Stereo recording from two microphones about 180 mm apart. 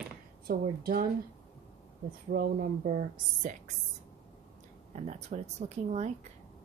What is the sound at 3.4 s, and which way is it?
Speech, 45° right (ahead or behind).